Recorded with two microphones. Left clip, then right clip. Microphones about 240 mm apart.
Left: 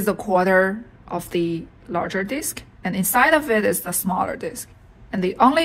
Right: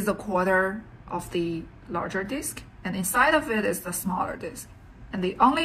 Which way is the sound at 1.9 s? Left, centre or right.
Left.